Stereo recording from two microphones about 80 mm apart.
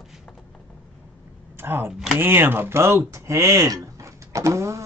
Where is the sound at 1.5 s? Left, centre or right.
Right.